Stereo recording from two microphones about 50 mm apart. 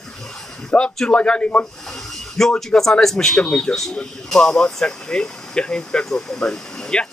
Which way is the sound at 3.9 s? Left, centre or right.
Centre.